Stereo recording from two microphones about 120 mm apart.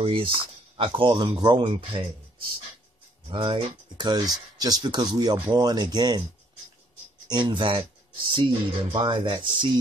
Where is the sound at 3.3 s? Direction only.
40° right (ahead or behind).